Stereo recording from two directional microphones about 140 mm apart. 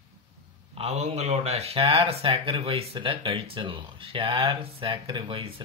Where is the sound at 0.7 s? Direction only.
50° right (ahead or behind).